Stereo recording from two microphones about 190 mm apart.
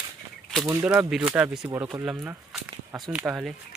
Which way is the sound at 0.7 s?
10° right (ahead or behind).